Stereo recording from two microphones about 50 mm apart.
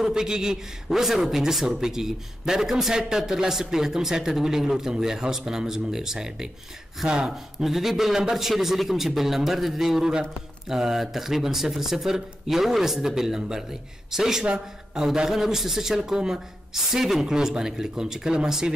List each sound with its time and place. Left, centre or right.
0.0 s a man's voice: centre
7.6 s a man's voice: centre